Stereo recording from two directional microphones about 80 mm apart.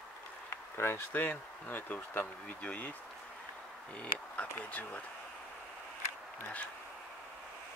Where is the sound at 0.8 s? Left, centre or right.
Left.